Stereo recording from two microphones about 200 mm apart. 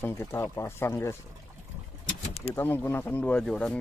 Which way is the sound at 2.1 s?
30° left (ahead or behind).